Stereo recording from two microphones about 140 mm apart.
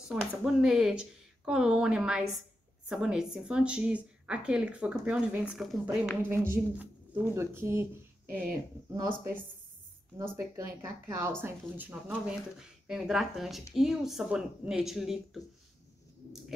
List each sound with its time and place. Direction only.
0.1 s a woman's voice: 5° right (ahead or behind)
6.2 s a woman's voice: 15° right (ahead or behind)